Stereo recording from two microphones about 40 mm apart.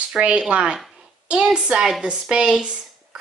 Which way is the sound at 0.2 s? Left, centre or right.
Right.